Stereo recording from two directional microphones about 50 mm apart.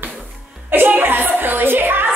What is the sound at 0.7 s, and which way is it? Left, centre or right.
A woman's voice, right.